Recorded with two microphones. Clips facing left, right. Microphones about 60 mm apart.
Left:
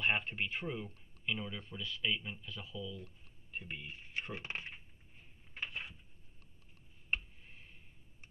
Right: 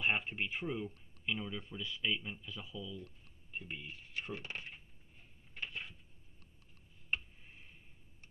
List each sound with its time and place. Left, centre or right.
0.0 s speech: centre
1.8 s speech: centre
2.0 s a man's voice: centre
2.4 s speech: centre
3.5 s speech: centre
3.8 s speech: left
5.5 s a sound: left